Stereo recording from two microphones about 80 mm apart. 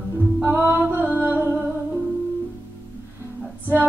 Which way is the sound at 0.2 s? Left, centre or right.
Right.